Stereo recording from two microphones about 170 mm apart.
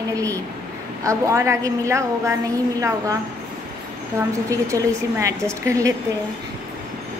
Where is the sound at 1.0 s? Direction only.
15° right (ahead or behind).